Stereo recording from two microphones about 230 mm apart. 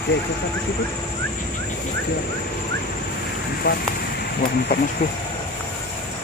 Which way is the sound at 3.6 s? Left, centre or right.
Left.